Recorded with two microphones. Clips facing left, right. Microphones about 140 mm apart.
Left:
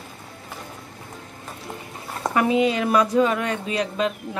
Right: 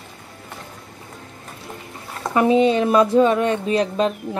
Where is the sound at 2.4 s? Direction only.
30° right (ahead or behind).